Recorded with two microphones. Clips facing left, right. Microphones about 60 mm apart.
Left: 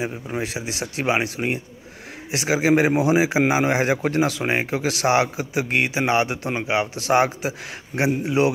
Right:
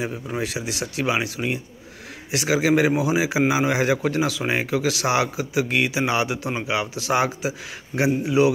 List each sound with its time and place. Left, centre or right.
0.0 s a man's voice: left
2.3 s a man's voice: left